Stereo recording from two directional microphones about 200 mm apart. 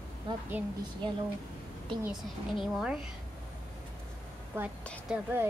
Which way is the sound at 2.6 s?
Centre (ahead or behind).